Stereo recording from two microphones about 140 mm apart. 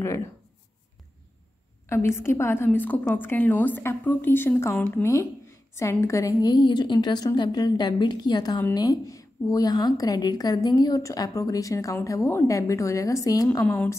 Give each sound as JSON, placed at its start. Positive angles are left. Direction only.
{"t": 1.9, "sound": "a woman's voice", "side_deg": 20}